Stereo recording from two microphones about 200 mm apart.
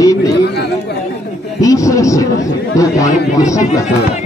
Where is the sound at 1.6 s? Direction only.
15° left (ahead or behind).